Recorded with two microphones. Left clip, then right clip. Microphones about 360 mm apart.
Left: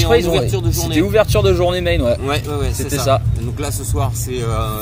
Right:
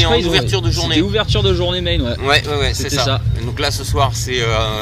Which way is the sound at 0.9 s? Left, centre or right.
Centre.